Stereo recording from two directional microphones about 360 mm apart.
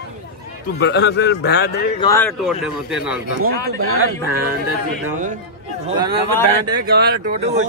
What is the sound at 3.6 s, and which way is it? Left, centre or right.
Speech, right.